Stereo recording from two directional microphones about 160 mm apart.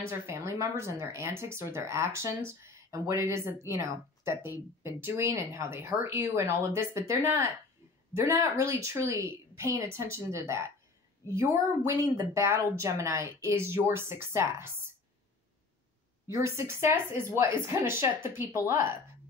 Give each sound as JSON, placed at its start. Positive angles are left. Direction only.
{"t": 0.3, "sound": "speech", "side_deg": -15}
{"t": 16.3, "sound": "speech", "side_deg": -20}